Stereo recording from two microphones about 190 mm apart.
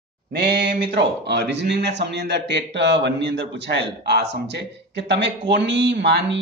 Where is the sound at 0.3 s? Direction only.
65° right (ahead or behind).